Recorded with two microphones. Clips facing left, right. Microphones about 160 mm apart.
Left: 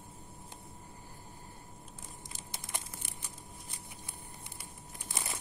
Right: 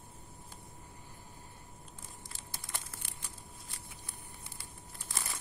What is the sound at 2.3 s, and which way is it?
Crumpling, 20° left (ahead or behind).